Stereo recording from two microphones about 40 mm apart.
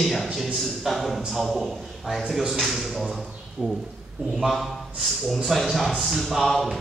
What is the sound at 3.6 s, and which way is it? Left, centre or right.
Speech, right.